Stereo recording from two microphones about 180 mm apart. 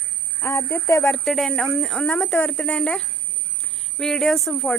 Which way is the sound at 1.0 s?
Centre (ahead or behind).